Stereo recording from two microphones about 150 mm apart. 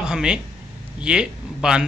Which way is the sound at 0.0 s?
5° right (ahead or behind).